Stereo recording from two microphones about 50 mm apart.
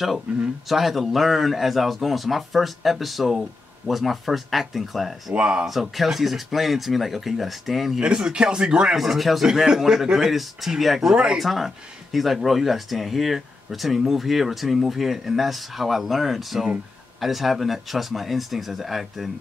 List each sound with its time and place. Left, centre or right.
0.3 s speech: right
0.7 s speech: centre
5.3 s speech: right
5.7 s speech: centre
8.0 s speech: centre
8.9 s speech: centre